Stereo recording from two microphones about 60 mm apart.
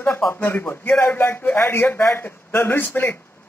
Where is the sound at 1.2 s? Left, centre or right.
Left.